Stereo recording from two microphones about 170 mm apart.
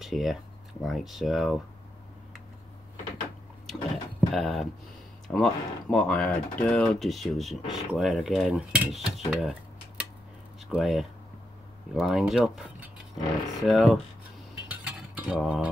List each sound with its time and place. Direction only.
0.0 s speech: centre (ahead or behind)
3.6 s a sound: centre (ahead or behind)
5.3 s speech: centre (ahead or behind)
14.7 s cutlery: 5° right (ahead or behind)